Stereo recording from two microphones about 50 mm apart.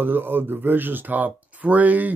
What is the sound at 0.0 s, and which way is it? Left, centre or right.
Speech, right.